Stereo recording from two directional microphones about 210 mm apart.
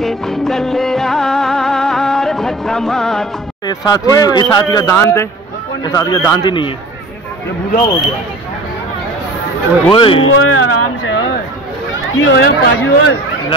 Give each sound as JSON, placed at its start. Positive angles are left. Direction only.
{"t": 0.0, "sound": "music", "side_deg": 0}
{"t": 3.6, "sound": "speech", "side_deg": 20}
{"t": 7.7, "sound": "speech", "side_deg": 15}
{"t": 9.8, "sound": "speech", "side_deg": 25}
{"t": 10.3, "sound": "speech", "side_deg": 70}
{"t": 12.3, "sound": "speech", "side_deg": 55}